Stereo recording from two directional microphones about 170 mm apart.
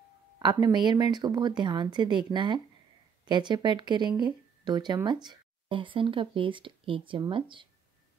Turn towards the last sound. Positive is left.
turn(degrees=-30)  # may be behind; listen again after turning